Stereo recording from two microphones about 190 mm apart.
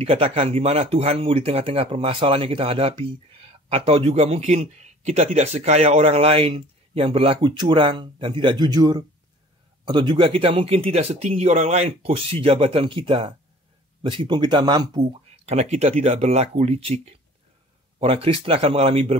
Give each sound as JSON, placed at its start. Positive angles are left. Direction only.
{"t": 0.0, "sound": "a man's voice", "side_deg": -30}
{"t": 15.0, "sound": "a man's voice", "side_deg": -35}